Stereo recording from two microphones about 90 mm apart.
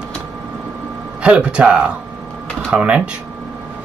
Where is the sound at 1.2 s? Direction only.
10° right (ahead or behind).